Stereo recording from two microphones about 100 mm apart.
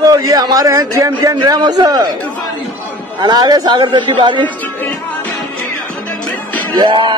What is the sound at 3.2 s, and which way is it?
Speech, 45° right (ahead or behind).